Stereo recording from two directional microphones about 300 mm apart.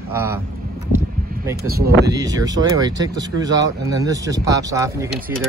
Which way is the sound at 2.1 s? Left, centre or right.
Centre.